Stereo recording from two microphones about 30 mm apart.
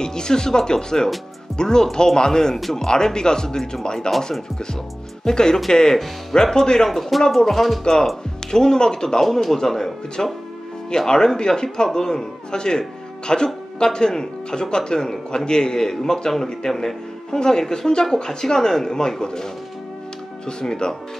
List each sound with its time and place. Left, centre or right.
0.0 s speech: left
2.9 s speech: left
5.2 s speech: left
6.9 s speech: centre
8.5 s speech: left
9.2 s speech: centre
10.2 s speech: left